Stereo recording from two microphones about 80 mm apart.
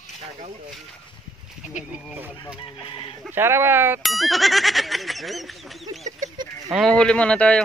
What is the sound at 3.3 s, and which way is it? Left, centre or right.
Speech, right.